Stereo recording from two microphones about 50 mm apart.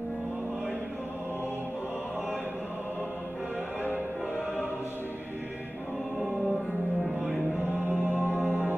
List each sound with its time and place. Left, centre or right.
6.1 s music: centre
7.9 s music: right